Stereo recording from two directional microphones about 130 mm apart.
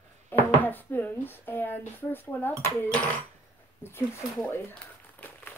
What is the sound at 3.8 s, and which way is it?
Speech, 20° left (ahead or behind).